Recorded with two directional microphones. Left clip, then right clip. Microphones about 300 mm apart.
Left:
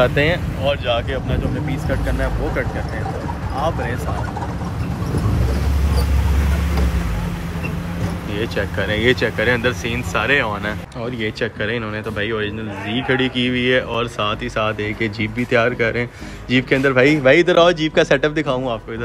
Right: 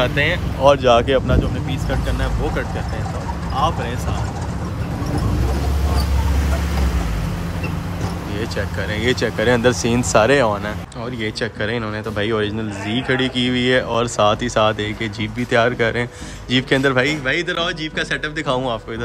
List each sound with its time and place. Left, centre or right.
0.0 s speech: centre
0.7 s speech: right
8.4 s speech: centre